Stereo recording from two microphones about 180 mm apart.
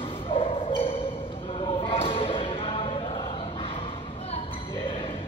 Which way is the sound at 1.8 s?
30° left (ahead or behind).